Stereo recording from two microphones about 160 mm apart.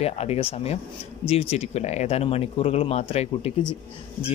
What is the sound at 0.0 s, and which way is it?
A man's voice, 40° left (ahead or behind).